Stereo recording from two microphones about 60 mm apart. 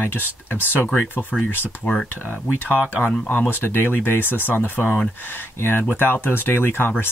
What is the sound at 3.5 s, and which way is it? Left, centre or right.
Speech, left.